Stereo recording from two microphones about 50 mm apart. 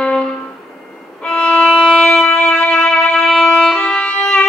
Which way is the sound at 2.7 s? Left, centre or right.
Centre.